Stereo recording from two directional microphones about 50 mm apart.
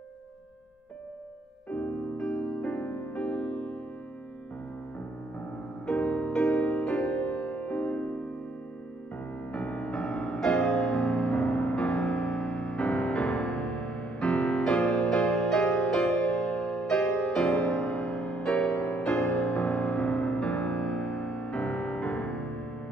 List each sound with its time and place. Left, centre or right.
2.1 s music: centre
5.9 s music: left
6.7 s music: centre
9.5 s music: left
9.9 s music: centre
14.3 s music: centre
17.9 s music: left